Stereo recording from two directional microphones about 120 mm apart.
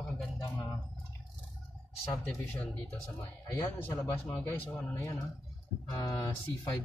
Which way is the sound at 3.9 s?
30° left (ahead or behind).